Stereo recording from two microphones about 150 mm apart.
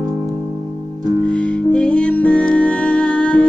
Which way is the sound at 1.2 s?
5° left (ahead or behind).